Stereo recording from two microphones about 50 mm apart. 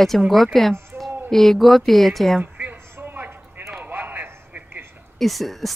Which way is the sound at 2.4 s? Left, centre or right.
Right.